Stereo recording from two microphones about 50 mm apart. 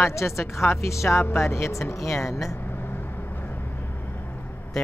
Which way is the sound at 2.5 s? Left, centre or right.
Left.